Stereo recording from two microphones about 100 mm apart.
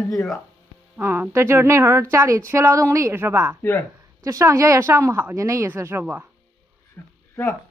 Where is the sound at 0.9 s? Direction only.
20° right (ahead or behind).